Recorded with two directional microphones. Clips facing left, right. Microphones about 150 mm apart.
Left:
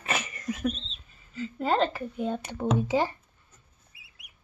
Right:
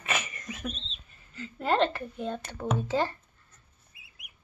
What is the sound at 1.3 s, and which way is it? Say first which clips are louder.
Speech: left 1 dB; centre (ahead or behind).